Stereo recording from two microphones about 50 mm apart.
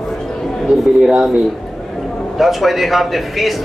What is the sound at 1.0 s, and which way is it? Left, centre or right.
Speech, centre.